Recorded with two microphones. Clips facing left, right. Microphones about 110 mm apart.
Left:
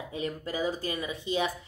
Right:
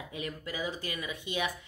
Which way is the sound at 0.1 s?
30° left (ahead or behind).